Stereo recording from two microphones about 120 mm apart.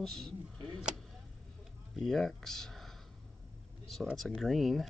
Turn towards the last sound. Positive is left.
turn(degrees=0)  # may be behind; listen again after turning